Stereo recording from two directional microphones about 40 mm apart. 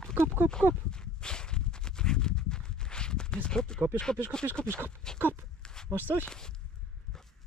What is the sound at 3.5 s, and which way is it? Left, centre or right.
Speech, centre.